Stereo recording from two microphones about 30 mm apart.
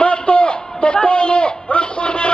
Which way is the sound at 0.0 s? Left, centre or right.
Left.